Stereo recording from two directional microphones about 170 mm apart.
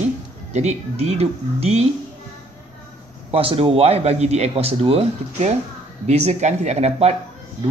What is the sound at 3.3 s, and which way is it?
Speech, 35° right (ahead or behind).